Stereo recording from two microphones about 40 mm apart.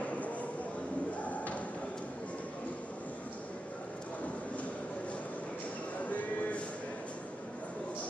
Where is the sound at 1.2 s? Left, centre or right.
Left.